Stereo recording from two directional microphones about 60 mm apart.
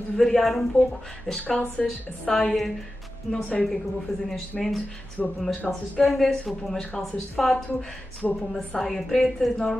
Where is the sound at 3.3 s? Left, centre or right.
Centre.